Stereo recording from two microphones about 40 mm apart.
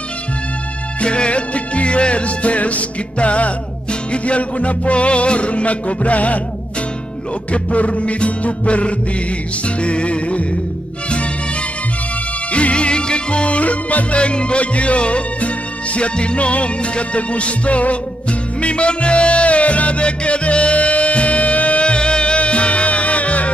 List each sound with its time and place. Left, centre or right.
1.0 s music: left
7.5 s music: left
12.5 s music: left